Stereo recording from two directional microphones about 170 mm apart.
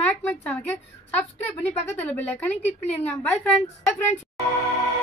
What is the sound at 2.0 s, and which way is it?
A woman's voice, 10° left (ahead or behind).